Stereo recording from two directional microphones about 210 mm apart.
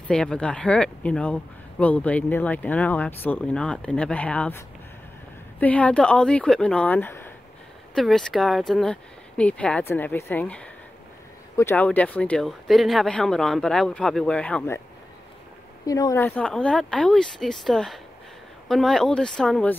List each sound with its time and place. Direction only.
0.1 s speech: 5° left (ahead or behind)
15.8 s speech: 15° left (ahead or behind)
16.3 s speech: 5° left (ahead or behind)